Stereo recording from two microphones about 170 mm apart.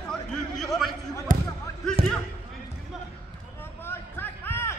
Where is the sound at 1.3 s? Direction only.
50° right (ahead or behind).